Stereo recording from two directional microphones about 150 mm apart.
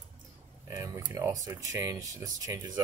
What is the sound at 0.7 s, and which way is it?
Speech, 20° right (ahead or behind).